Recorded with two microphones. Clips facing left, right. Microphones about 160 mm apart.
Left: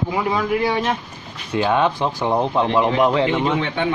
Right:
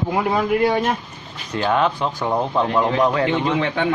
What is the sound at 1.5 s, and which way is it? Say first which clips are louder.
Speech: left 1 dB; 15° left (ahead or behind).